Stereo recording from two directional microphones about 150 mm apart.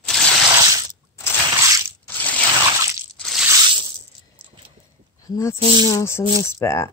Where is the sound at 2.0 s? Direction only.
10° left (ahead or behind).